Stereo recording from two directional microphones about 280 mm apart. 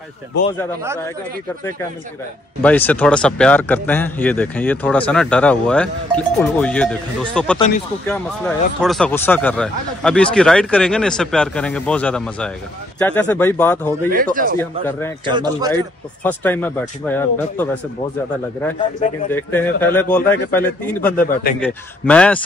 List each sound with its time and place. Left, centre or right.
0.5 s a man's voice: centre
2.6 s speech: centre
14.1 s speech: right
14.6 s a man's voice: centre
15.2 s a man's voice: centre
15.7 s speech: centre
19.3 s a man's voice: centre